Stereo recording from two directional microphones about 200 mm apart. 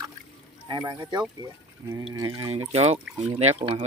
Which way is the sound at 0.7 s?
20° right (ahead or behind).